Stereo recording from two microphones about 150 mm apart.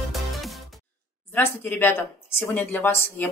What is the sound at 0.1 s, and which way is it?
Music, centre (ahead or behind).